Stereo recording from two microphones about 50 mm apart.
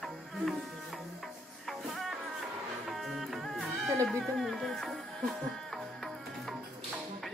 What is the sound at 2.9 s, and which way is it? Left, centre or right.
Music, centre.